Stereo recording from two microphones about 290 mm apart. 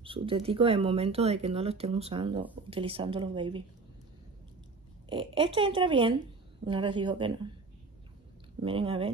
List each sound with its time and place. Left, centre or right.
0.0 s a woman's voice: centre
5.1 s a woman's voice: centre
8.5 s speech: centre